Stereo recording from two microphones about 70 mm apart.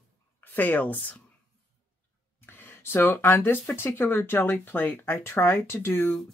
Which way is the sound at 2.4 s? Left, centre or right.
Left.